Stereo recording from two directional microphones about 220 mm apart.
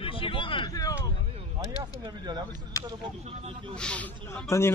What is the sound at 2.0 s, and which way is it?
Speech, 20° right (ahead or behind).